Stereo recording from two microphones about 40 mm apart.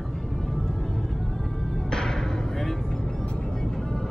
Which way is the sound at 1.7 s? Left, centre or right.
Centre.